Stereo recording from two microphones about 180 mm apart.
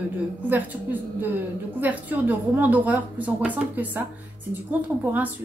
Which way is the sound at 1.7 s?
10° right (ahead or behind).